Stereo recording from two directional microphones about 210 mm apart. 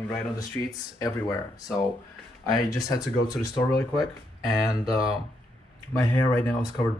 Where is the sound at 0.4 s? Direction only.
15° left (ahead or behind).